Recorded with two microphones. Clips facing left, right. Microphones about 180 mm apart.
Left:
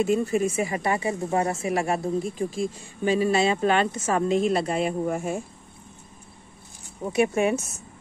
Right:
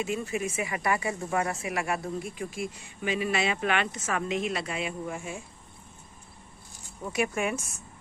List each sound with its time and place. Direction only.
0.0 s speech: 35° left (ahead or behind)
7.0 s speech: 25° left (ahead or behind)